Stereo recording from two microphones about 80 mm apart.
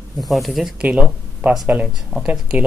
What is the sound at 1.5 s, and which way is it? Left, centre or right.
Speech, centre.